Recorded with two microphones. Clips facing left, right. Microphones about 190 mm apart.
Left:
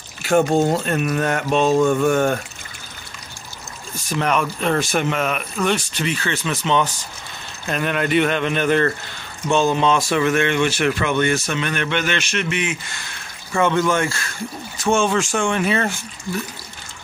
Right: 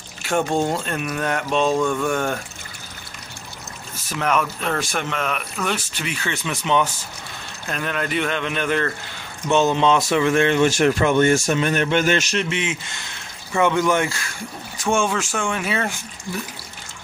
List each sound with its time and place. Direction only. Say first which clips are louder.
0.7 s speech: left 5 dB; 5° left (ahead or behind)
1.6 s mantra: left 4 dB; 40° left (ahead or behind)
3.9 s speech: left 1 dB; 5° right (ahead or behind)
5.6 s speech: left 7 dB; 5° right (ahead or behind)
7.6 s speech: left 4 dB; 5° left (ahead or behind)
9.5 s speech: even; 20° right (ahead or behind); by 12.4 s 40° right (ahead or behind)
12.4 s speech: left 1 dB; 25° right (ahead or behind)
13.5 s speech: even; 15° right (ahead or behind)